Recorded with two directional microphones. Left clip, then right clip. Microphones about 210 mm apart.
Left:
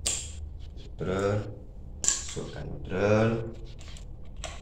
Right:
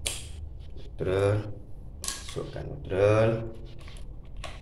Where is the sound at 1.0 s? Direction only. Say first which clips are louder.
Right 2 dB; 55° right (ahead or behind).